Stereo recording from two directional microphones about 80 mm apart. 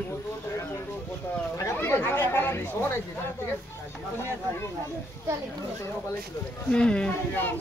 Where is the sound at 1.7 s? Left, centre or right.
Left.